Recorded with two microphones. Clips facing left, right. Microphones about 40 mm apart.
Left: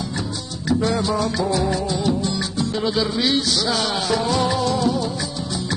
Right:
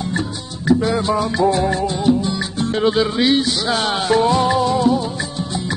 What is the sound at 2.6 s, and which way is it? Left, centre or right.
Music, right.